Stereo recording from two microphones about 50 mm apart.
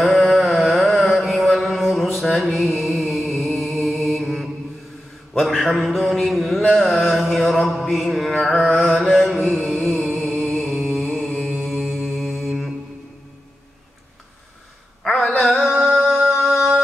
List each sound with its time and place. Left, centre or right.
0.0 s carnatic music: centre
1.1 s mantra: centre
2.1 s music: centre
5.3 s a sound: centre
9.0 s mantra: centre
10.8 s music: centre
11.1 s mantra: centre
15.0 s a sound: centre
15.4 s singing: centre